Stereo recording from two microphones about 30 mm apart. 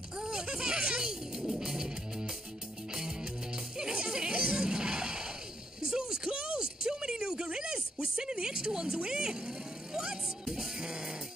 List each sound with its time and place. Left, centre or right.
0.2 s music: right
5.9 s a sound: right
10.4 s music: centre